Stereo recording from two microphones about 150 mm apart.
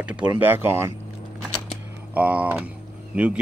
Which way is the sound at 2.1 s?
10° right (ahead or behind).